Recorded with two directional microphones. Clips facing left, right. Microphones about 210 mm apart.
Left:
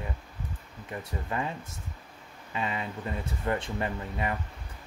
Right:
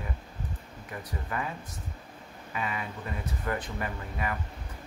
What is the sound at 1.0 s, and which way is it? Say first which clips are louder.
Speech: left 2 dB; 25° left (ahead or behind).